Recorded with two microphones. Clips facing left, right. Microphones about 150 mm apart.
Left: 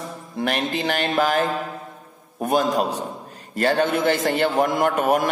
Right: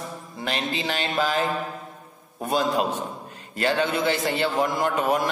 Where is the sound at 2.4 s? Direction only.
45° left (ahead or behind).